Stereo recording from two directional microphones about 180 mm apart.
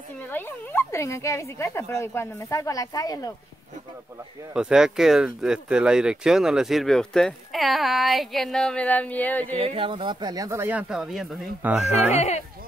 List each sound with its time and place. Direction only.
0.3 s speech: 10° left (ahead or behind)
4.6 s speech: 5° right (ahead or behind)
9.6 s speech: 30° right (ahead or behind); by 11.9 s 5° right (ahead or behind)
12.1 s speech: 35° left (ahead or behind)